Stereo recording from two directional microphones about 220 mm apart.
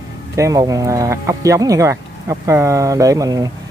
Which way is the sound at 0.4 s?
15° right (ahead or behind).